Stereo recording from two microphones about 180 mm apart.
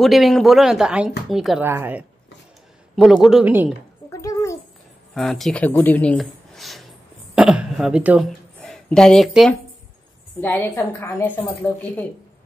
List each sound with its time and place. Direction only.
0.0 s speech: centre (ahead or behind)
3.3 s speech: 5° right (ahead or behind)
4.1 s a sound: 20° left (ahead or behind)
5.1 s a woman's voice: centre (ahead or behind)
10.4 s a woman's voice: 10° left (ahead or behind)